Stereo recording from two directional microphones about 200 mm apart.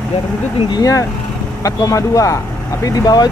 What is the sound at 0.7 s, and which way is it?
Speech, 20° left (ahead or behind).